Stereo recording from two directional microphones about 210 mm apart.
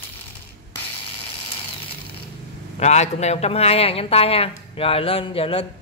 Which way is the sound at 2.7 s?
30° left (ahead or behind).